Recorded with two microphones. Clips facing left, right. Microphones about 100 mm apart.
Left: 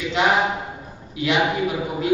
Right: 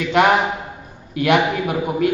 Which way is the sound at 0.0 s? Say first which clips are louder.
Right 4 dB; 55° right (ahead or behind).